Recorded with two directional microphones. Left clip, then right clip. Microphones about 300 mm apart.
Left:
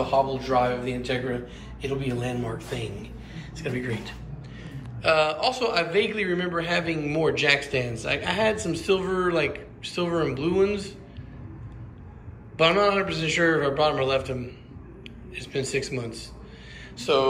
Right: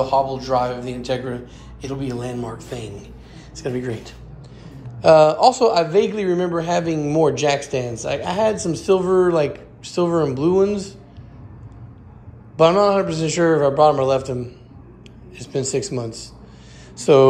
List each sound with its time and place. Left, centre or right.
0.0 s a man's voice: centre
12.5 s a man's voice: centre
15.5 s a man's voice: centre
16.9 s speech: right